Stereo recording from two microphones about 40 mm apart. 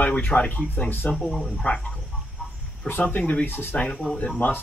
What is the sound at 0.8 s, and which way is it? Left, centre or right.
Speech, left.